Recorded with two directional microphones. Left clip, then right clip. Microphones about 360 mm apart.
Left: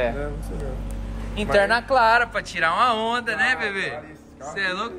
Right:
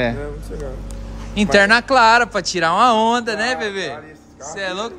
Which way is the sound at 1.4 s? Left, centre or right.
Right.